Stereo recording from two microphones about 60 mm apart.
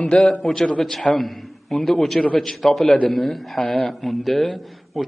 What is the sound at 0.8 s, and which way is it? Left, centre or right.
A man's voice, centre.